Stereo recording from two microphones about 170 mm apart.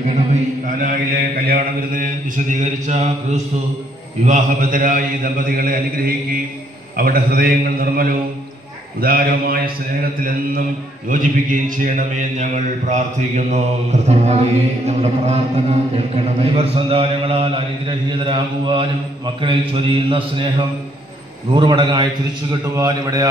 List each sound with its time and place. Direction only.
0.0 s mantra: 45° right (ahead or behind)
7.0 s a man's voice: 60° right (ahead or behind)
11.1 s mantra: 50° right (ahead or behind)
14.0 s a man's voice: 40° right (ahead or behind); by 23.2 s 20° right (ahead or behind)